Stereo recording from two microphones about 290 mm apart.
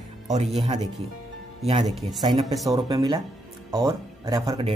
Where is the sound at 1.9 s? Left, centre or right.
Centre.